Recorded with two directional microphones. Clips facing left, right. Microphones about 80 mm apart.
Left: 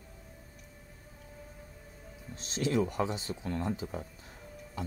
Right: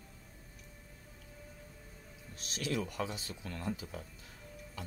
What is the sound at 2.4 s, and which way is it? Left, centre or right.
Speech, left.